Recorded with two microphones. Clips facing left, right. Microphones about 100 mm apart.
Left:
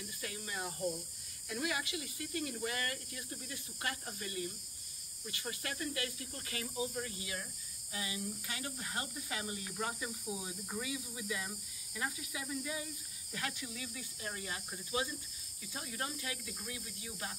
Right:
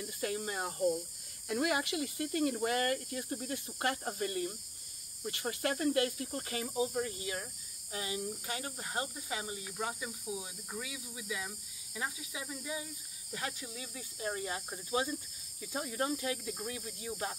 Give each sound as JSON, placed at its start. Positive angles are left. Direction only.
{"t": 0.2, "sound": "snake", "side_deg": -45}
{"t": 1.5, "sound": "speech", "side_deg": -50}
{"t": 11.9, "sound": "speech", "side_deg": -15}